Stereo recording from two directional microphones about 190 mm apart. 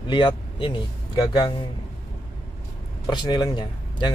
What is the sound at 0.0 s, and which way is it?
A man's voice, 25° left (ahead or behind).